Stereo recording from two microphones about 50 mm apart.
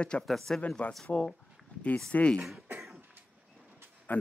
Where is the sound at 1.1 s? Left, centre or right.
Left.